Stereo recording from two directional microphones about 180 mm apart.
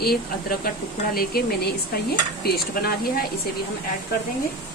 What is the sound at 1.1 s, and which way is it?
Speech, 60° left (ahead or behind).